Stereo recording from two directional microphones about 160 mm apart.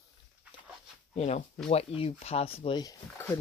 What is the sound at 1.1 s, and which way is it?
Speech, 40° left (ahead or behind).